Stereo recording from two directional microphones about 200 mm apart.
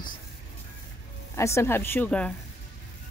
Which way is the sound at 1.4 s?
15° left (ahead or behind).